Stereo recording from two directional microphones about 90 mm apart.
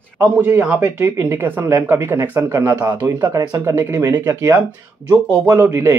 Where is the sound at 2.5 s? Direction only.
40° right (ahead or behind).